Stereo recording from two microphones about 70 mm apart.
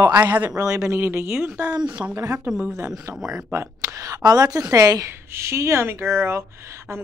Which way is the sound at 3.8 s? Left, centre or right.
Right.